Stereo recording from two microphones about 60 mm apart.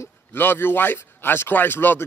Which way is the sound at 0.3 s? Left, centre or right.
Left.